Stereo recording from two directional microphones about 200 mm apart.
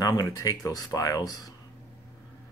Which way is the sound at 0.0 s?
20° left (ahead or behind).